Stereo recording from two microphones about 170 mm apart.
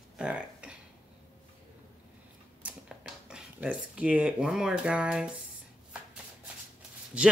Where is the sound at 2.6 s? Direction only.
5° right (ahead or behind).